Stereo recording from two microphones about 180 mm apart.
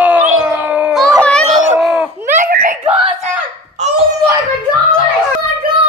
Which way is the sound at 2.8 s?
30° right (ahead or behind).